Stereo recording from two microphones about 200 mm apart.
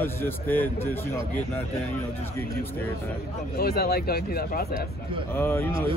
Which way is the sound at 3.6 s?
50° left (ahead or behind).